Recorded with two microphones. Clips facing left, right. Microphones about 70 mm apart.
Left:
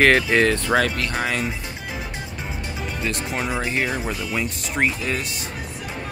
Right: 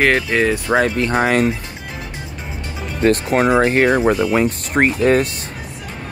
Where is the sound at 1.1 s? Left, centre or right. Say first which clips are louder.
Right 9 dB; right.